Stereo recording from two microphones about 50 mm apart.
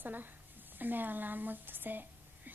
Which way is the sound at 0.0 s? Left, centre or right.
Right.